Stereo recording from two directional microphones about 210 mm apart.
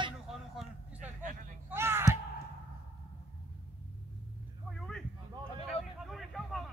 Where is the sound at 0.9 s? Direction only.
40° right (ahead or behind).